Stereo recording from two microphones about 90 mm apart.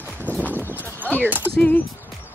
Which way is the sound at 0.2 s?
15° left (ahead or behind).